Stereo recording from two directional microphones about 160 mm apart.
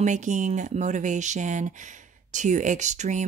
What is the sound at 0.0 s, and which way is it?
Speech, 50° right (ahead or behind).